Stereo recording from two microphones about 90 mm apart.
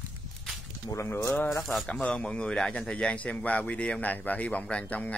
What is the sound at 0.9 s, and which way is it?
Speech, 35° left (ahead or behind).